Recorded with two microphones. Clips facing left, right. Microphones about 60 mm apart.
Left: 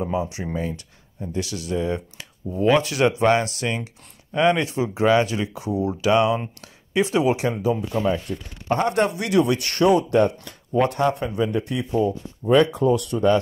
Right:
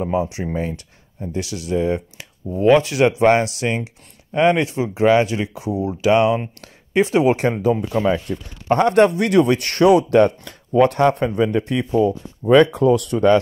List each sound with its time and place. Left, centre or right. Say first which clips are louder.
0.0 s speech: right 4 dB; right
12.4 s speech: right 4 dB; right